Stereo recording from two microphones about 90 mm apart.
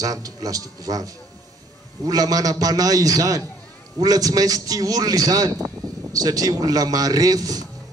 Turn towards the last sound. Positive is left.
turn(degrees=-45)  # may be behind; listen again after turning